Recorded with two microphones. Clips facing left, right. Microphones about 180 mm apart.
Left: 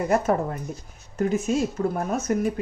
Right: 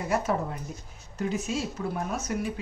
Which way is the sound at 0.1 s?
50° left (ahead or behind).